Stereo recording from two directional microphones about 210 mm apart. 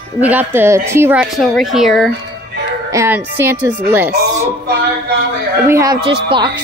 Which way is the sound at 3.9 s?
10° right (ahead or behind).